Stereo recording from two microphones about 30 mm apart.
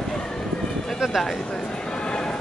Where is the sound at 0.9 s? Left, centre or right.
Centre.